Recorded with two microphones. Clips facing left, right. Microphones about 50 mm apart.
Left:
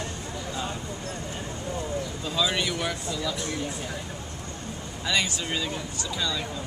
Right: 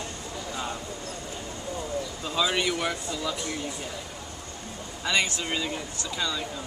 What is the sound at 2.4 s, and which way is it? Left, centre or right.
Speech, centre.